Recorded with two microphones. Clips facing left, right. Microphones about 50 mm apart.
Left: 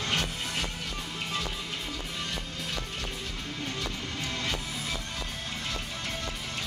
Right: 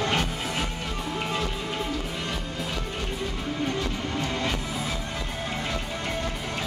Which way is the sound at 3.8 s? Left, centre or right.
Centre.